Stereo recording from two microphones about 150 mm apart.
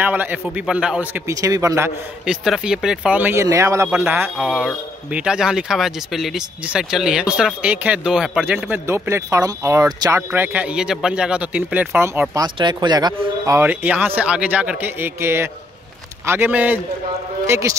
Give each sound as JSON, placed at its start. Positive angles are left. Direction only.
{"t": 0.0, "sound": "speech", "side_deg": -10}
{"t": 1.2, "sound": "speech", "side_deg": -20}
{"t": 2.2, "sound": "speech", "side_deg": -5}
{"t": 4.4, "sound": "speech", "side_deg": -5}
{"t": 10.3, "sound": "speech", "side_deg": -10}
{"t": 12.4, "sound": "speech", "side_deg": -30}
{"t": 13.6, "sound": "speech", "side_deg": -10}